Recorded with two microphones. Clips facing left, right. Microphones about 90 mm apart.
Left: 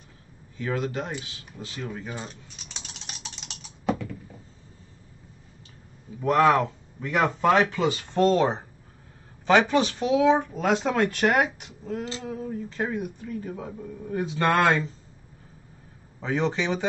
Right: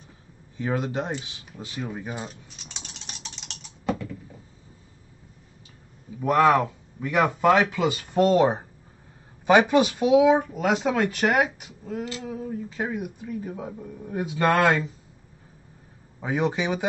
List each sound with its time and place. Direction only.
0.6 s speech: 20° right (ahead or behind)
2.8 s a sound: centre (ahead or behind)
6.2 s speech: 5° right (ahead or behind)
16.2 s speech: 15° right (ahead or behind)